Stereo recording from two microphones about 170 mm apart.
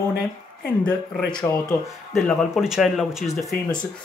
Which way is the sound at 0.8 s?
5° left (ahead or behind).